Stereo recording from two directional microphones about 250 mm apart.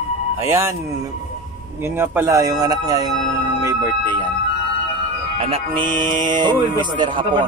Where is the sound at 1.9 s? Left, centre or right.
Centre.